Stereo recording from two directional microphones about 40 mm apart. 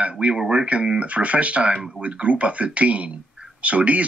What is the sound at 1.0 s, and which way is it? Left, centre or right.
Speech, right.